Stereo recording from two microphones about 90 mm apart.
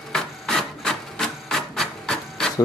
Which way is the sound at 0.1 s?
5° left (ahead or behind).